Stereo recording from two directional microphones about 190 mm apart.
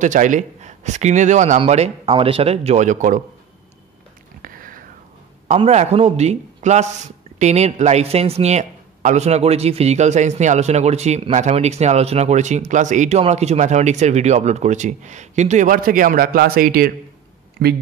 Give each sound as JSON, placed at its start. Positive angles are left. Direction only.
{"t": 0.0, "sound": "speech", "side_deg": -40}
{"t": 4.4, "sound": "a sound", "side_deg": -45}
{"t": 5.5, "sound": "speech", "side_deg": -35}
{"t": 17.6, "sound": "speech", "side_deg": -60}